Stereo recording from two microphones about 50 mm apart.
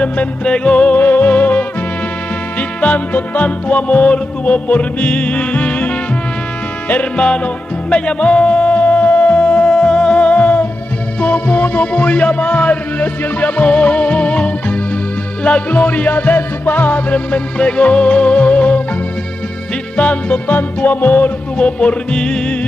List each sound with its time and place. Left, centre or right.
0.0 s music: left
2.8 s music: left
20.0 s music: left
21.5 s music: left